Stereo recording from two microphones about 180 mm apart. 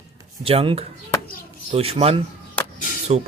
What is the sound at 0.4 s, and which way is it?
Speech, 30° right (ahead or behind).